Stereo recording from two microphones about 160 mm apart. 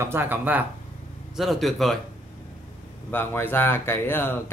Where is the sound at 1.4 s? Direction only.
Centre (ahead or behind).